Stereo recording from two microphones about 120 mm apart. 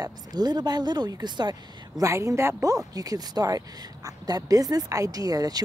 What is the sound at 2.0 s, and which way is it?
Speech, 25° right (ahead or behind).